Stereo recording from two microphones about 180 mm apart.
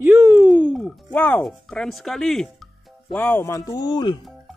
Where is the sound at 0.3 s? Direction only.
5° right (ahead or behind).